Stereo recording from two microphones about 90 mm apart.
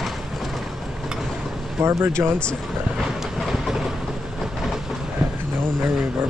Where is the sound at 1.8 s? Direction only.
30° right (ahead or behind).